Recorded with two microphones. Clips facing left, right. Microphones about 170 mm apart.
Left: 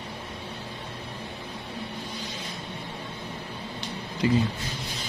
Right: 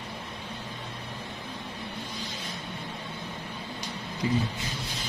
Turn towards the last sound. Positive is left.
turn(degrees=90)